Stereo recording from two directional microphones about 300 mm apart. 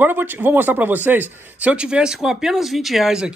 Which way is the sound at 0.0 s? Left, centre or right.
Centre.